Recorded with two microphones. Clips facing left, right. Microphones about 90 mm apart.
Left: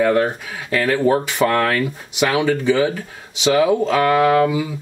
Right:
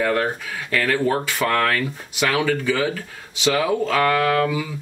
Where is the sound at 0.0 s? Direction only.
25° left (ahead or behind).